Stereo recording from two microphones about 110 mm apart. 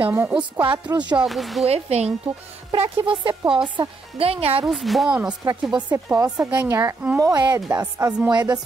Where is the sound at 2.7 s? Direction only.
50° right (ahead or behind).